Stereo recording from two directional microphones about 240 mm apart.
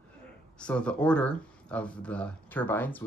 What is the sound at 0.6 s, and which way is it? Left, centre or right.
Speech, centre.